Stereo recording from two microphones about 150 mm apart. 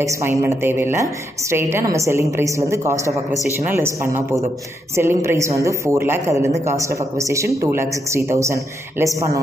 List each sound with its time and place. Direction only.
0.0 s a woman's voice: 20° right (ahead or behind)